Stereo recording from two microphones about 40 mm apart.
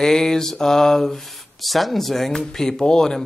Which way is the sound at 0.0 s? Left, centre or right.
Centre.